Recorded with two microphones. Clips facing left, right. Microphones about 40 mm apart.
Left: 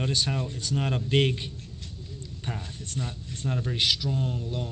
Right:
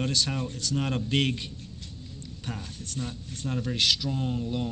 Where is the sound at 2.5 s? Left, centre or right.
Left.